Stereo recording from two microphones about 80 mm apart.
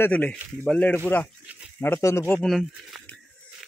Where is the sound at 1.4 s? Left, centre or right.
Centre.